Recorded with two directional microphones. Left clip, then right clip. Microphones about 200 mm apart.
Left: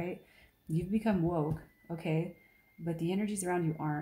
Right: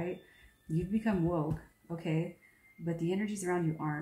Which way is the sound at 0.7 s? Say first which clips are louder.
Left 1 dB; 45° left (ahead or behind).